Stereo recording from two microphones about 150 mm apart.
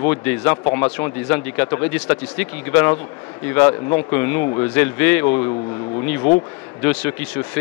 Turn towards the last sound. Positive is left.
turn(degrees=10)  # may be behind; listen again after turning